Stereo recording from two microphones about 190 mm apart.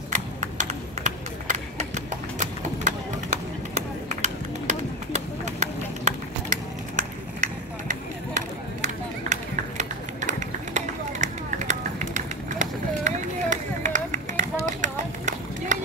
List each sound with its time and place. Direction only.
0.1 s a sound: 40° right (ahead or behind)
2.3 s chop: 40° right (ahead or behind)
8.4 s run: 40° right (ahead or behind)